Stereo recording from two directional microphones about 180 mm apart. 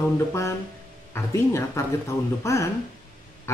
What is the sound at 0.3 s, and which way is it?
Speech, 15° left (ahead or behind).